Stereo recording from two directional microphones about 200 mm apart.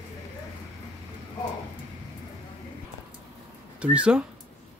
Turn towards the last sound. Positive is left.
turn(degrees=-5)  # may be behind; listen again after turning